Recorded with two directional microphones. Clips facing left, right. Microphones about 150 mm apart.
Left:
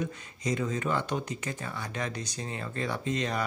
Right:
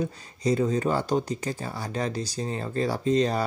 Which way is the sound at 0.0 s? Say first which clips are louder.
Right 6 dB; 35° right (ahead or behind).